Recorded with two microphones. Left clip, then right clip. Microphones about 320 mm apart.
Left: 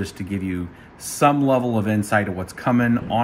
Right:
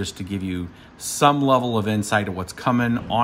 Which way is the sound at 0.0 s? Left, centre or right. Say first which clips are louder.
Left 1 dB; centre.